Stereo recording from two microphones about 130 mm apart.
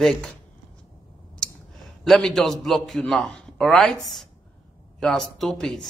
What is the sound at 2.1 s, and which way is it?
A man's voice, 5° left (ahead or behind).